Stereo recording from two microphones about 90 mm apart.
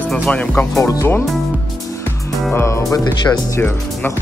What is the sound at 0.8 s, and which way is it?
Music, 40° left (ahead or behind).